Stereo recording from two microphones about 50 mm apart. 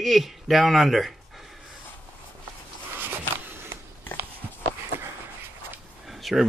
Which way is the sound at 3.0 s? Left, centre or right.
Right.